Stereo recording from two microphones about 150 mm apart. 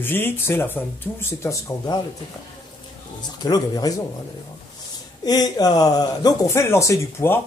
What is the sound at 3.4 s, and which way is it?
Speech, 25° left (ahead or behind).